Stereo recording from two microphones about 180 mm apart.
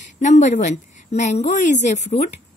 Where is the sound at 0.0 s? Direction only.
40° left (ahead or behind).